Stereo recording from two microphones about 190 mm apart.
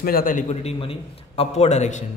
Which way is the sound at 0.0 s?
50° left (ahead or behind).